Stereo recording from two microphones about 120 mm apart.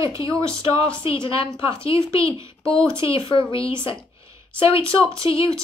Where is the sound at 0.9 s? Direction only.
45° left (ahead or behind).